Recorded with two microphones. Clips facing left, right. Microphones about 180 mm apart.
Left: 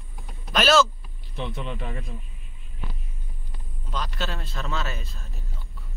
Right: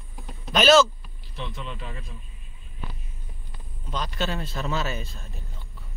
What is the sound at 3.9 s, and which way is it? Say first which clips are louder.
A man's voice: right 2 dB; centre (ahead or behind).